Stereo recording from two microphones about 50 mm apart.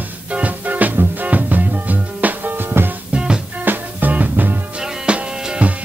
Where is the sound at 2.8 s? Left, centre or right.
Right.